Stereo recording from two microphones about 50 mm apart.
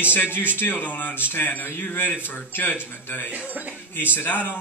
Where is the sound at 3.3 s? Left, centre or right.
Right.